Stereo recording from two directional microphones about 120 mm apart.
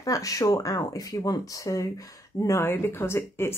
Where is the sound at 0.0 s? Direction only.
30° left (ahead or behind).